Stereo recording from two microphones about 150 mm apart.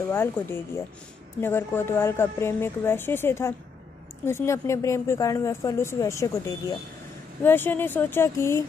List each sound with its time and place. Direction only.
0.1 s a woman's voice: 15° left (ahead or behind)